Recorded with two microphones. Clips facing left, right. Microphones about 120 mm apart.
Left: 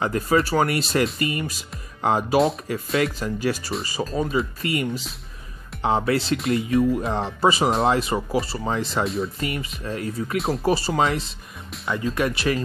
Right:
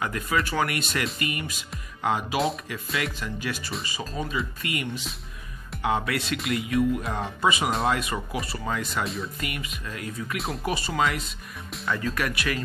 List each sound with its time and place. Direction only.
0.0 s speech: 35° left (ahead or behind)